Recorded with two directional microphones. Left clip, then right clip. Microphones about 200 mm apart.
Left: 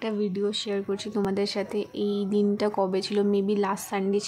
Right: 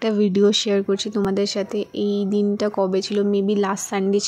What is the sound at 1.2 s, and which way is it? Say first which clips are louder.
Speech: right 5 dB; 20° right (ahead or behind).